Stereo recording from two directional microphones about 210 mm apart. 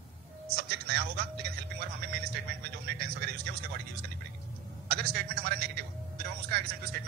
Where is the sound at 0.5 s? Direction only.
50° right (ahead or behind).